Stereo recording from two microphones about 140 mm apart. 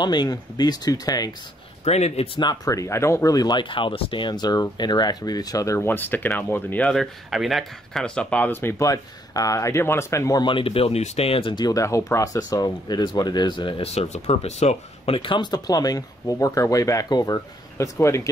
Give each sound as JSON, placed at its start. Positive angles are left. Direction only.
{"t": 0.0, "sound": "speech", "side_deg": 30}
{"t": 1.9, "sound": "speech", "side_deg": 50}
{"t": 2.4, "sound": "speech", "side_deg": 25}
{"t": 6.9, "sound": "speech", "side_deg": 0}
{"t": 10.4, "sound": "speech", "side_deg": 40}